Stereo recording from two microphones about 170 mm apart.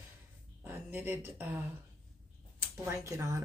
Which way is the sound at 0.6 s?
10° right (ahead or behind).